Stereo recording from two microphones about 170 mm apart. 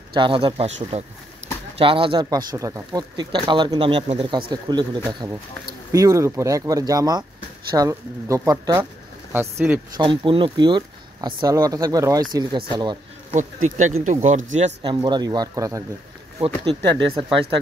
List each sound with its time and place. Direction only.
0.1 s speech: 30° right (ahead or behind)
1.8 s speech: 30° right (ahead or behind); by 9.8 s 10° right (ahead or behind)
9.9 s speech: 30° right (ahead or behind)
13.3 s speech: 45° right (ahead or behind)
14.8 s speech: 25° right (ahead or behind)
16.6 s speech: 30° right (ahead or behind)